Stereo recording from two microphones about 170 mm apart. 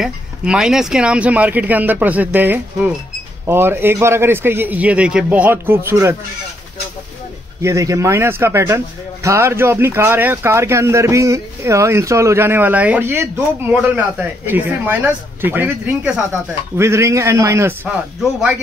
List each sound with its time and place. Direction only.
0.0 s a man's voice: 5° right (ahead or behind)
7.6 s a man's voice: 20° right (ahead or behind)